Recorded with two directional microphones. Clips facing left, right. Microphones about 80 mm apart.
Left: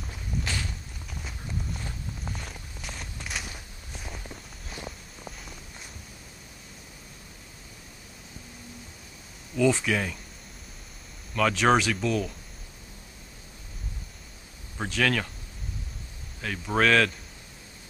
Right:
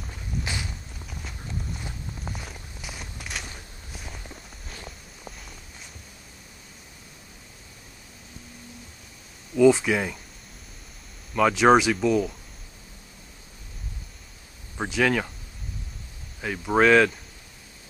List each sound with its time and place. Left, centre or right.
0.7 s walk: centre
9.6 s speech: centre
11.3 s speech: centre
14.8 s speech: centre
16.3 s speech: centre